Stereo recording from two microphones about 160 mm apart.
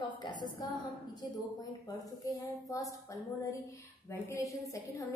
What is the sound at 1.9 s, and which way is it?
A woman's voice, 25° left (ahead or behind).